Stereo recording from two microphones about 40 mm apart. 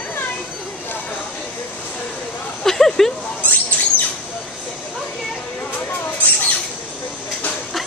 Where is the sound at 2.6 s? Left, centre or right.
Centre.